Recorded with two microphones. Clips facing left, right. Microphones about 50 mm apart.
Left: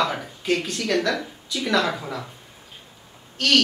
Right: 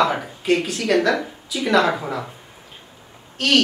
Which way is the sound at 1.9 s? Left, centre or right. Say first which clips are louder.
Right 5 dB; centre.